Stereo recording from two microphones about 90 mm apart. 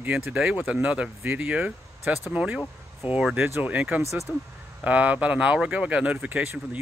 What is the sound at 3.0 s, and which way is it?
Speech, 25° right (ahead or behind).